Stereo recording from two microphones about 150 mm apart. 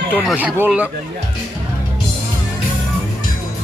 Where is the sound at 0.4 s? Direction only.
5° right (ahead or behind).